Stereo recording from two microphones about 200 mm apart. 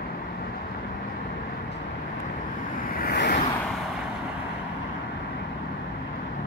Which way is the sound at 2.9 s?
50° left (ahead or behind).